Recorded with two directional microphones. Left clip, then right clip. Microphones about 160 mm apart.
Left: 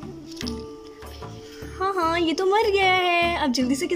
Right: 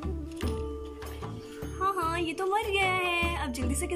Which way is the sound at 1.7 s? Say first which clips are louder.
Left 6 dB; 25° left (ahead or behind).